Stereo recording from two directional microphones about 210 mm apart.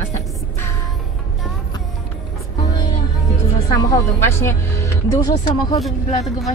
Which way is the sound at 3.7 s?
15° left (ahead or behind).